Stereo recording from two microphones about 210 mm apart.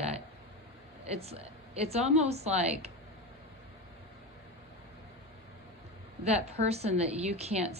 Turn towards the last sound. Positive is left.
turn(degrees=-30)  # may be behind; listen again after turning